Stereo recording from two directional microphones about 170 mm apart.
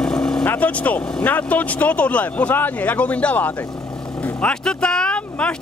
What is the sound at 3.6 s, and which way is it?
Speech, 20° left (ahead or behind).